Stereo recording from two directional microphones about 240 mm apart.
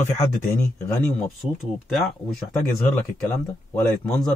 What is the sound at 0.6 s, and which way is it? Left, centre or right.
Speech, centre.